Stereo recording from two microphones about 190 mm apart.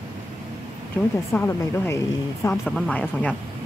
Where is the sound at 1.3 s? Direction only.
15° left (ahead or behind).